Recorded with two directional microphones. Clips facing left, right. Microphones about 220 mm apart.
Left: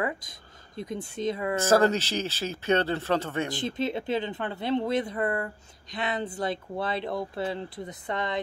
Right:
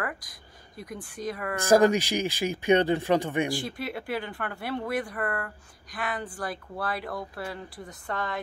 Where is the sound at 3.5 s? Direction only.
20° left (ahead or behind).